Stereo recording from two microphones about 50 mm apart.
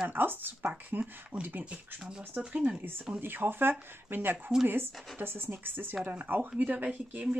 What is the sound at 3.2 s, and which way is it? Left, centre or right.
Speech, right.